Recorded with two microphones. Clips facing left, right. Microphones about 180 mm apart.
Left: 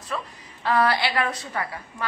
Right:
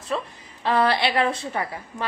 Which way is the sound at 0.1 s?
25° right (ahead or behind).